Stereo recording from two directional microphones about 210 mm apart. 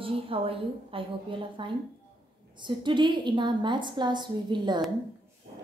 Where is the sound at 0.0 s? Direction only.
25° right (ahead or behind).